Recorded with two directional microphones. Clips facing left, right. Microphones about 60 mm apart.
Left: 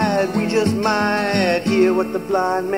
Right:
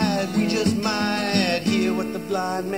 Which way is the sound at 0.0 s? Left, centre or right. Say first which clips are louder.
Left 4 dB; left.